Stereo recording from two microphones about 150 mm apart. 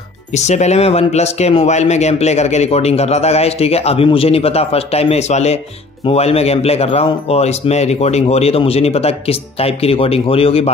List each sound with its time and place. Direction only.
0.3 s speech: 50° left (ahead or behind)